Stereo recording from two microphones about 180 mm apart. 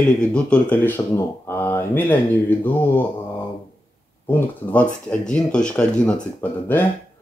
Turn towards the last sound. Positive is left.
turn(degrees=10)  # may be behind; listen again after turning